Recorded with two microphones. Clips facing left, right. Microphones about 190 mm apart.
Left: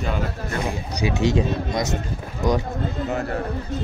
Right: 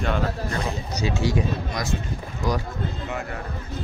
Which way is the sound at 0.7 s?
15° left (ahead or behind).